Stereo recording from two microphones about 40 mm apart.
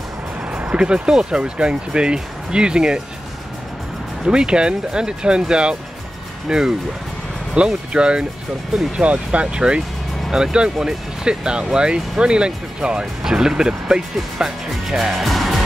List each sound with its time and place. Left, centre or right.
0.5 s music: right
0.7 s speech: right
4.2 s speech: right
9.6 s speech: centre
15.2 s music: centre